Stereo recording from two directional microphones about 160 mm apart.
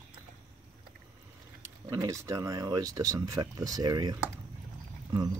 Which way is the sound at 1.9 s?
20° right (ahead or behind).